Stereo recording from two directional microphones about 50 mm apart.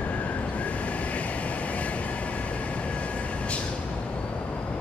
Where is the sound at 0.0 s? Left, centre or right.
Left.